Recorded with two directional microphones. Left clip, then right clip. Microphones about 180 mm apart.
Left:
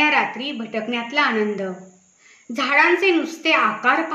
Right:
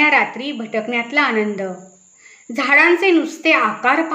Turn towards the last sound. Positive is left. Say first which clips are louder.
# right 2 dB
turn(degrees=-35)  # may be behind; listen again after turning